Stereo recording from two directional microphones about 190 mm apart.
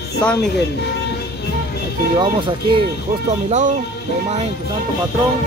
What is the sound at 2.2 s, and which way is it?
Speech, 25° right (ahead or behind).